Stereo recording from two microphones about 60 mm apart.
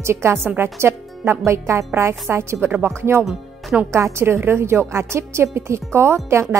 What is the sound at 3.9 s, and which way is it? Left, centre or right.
Speech, right.